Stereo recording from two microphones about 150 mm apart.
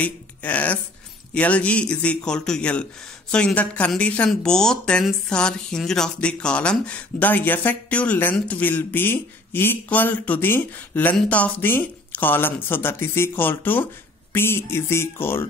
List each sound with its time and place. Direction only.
0.0 s a man's voice: 10° left (ahead or behind)